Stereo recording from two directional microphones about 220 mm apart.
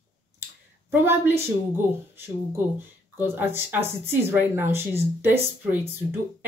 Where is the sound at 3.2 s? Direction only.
10° right (ahead or behind).